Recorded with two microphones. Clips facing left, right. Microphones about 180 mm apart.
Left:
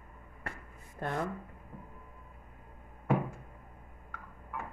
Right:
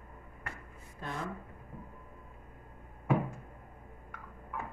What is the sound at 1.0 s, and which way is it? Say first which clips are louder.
Speech: left 5 dB; 55° left (ahead or behind).